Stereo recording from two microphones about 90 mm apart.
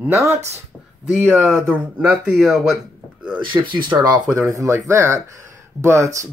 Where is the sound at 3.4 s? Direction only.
65° right (ahead or behind).